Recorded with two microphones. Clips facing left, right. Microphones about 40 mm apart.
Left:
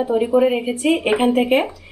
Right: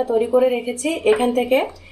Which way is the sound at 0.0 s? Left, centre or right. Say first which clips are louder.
Even; centre.